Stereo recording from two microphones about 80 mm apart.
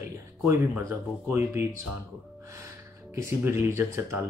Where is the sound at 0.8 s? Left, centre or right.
Right.